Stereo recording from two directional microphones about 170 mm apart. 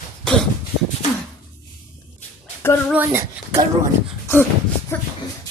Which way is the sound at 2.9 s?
10° right (ahead or behind).